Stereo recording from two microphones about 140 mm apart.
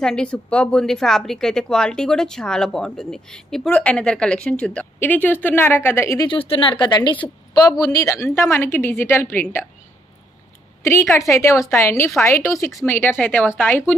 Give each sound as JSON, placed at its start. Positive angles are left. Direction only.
{"t": 0.0, "sound": "speech", "side_deg": 5}
{"t": 6.2, "sound": "a woman's voice", "side_deg": 40}
{"t": 10.8, "sound": "a woman's voice", "side_deg": 20}